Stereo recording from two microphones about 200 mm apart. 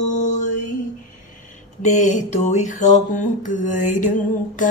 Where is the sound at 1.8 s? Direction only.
40° left (ahead or behind).